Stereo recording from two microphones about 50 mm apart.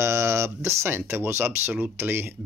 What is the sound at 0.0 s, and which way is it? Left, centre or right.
Speech, right.